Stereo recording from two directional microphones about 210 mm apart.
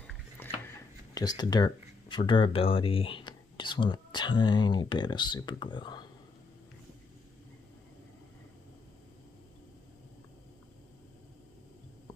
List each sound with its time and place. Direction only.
1.1 s speech: 20° left (ahead or behind)